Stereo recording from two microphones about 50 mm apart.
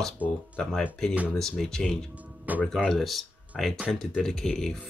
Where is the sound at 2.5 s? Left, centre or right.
Right.